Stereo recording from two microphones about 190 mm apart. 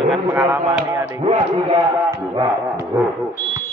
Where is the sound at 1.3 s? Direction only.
25° right (ahead or behind).